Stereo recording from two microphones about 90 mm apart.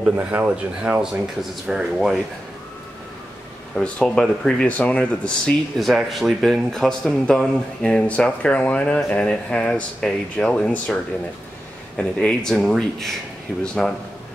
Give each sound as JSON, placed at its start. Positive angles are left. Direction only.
{"t": 0.0, "sound": "speech", "side_deg": -10}
{"t": 1.1, "sound": "speech", "side_deg": -5}
{"t": 3.7, "sound": "speech", "side_deg": 5}
{"t": 5.8, "sound": "speech", "side_deg": 0}
{"t": 12.0, "sound": "speech", "side_deg": 10}